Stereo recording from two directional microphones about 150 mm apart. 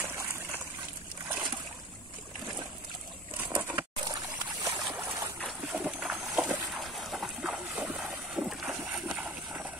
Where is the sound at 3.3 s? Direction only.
10° right (ahead or behind).